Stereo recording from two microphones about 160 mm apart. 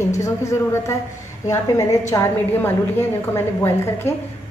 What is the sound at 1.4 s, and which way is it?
A woman's voice, 20° left (ahead or behind).